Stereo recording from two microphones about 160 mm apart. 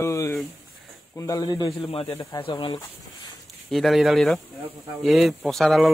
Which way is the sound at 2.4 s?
30° left (ahead or behind).